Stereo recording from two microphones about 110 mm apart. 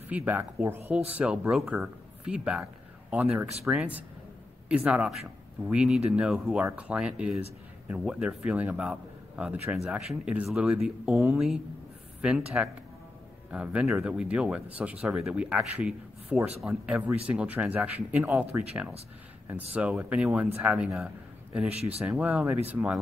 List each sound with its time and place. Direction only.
0.1 s speech: 15° right (ahead or behind)